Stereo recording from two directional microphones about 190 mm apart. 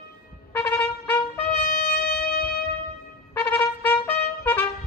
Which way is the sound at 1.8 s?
55° left (ahead or behind).